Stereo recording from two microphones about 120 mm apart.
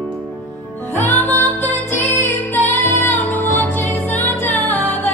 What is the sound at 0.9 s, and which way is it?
Music, 80° left.